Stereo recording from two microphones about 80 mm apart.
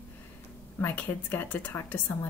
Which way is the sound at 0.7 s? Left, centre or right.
Left.